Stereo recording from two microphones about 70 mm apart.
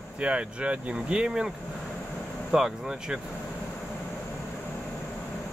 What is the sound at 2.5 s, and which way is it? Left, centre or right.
Speech, centre.